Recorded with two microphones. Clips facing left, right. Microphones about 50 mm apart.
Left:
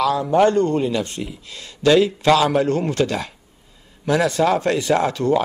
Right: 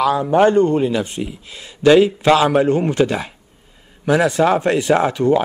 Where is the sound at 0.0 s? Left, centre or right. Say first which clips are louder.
Right 2 dB; right.